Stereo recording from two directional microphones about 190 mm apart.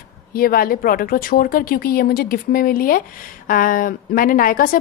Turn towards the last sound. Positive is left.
turn(degrees=45)  # may be behind; listen again after turning